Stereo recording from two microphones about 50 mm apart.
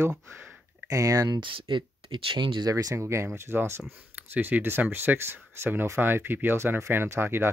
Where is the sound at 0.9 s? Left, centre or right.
Right.